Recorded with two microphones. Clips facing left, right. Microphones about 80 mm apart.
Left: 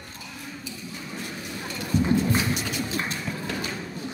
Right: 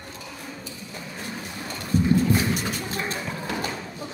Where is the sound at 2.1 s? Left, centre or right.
Right.